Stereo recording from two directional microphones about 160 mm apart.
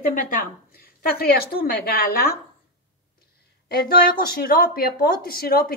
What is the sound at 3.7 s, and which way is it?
A woman's voice, 65° left (ahead or behind).